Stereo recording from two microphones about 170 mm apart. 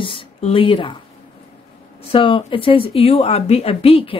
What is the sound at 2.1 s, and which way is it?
A woman's voice, 30° left (ahead or behind).